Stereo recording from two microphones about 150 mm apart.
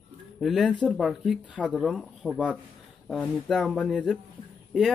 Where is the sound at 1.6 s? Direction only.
5° left (ahead or behind).